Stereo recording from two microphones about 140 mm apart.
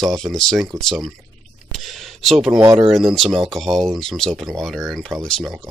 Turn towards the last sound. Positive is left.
turn(degrees=5)  # may be behind; listen again after turning